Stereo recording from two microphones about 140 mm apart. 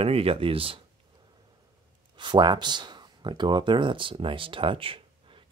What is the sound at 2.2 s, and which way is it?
Speech, 35° right (ahead or behind).